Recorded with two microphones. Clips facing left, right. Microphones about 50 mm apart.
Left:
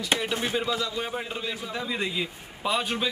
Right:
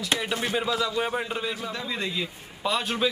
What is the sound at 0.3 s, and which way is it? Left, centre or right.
Speech, right.